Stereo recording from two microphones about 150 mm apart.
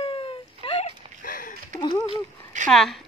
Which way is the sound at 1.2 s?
70° left (ahead or behind).